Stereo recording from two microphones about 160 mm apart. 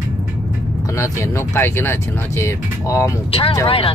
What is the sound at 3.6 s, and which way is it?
Speech, 35° left (ahead or behind).